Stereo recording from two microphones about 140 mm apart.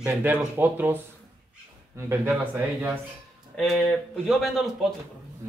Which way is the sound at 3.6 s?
Centre (ahead or behind).